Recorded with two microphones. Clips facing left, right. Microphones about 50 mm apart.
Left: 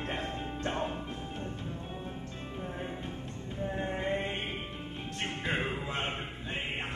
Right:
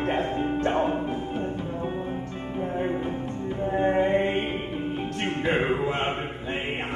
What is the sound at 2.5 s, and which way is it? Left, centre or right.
Music, right.